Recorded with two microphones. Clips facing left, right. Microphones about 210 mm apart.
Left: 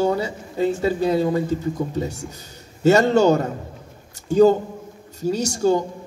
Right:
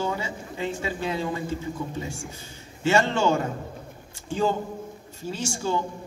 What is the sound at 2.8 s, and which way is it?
A man's voice, 40° left (ahead or behind).